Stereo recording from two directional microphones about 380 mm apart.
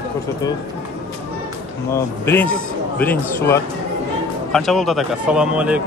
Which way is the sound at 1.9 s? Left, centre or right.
Centre.